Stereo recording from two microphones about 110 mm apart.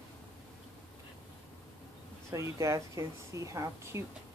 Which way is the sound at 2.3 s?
30° right (ahead or behind).